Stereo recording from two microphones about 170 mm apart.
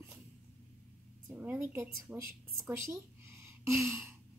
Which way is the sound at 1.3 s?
10° right (ahead or behind).